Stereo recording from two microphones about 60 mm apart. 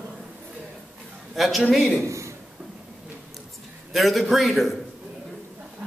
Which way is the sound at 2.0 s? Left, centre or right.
Right.